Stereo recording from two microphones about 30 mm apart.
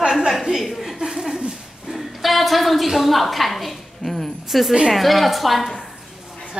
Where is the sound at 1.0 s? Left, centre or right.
Right.